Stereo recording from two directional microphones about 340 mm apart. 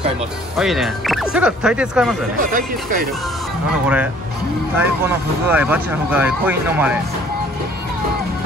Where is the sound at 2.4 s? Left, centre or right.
Right.